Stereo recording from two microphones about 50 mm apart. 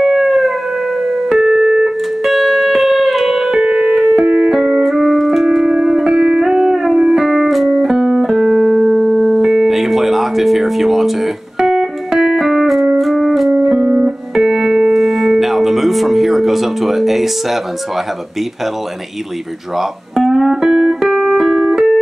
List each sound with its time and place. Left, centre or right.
0.0 s siren: centre
1.3 s music: centre
2.2 s music: centre
3.6 s music: centre
13.6 s music: centre
14.3 s keyboard: centre
14.8 s music: centre
19.8 s music: centre